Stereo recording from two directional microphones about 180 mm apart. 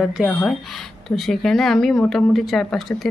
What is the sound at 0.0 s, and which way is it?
Speech, centre (ahead or behind).